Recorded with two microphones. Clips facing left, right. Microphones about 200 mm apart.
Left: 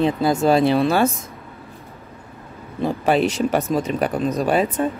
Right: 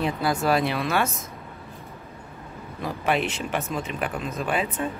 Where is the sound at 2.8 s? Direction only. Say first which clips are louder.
Left 7 dB; 30° left (ahead or behind).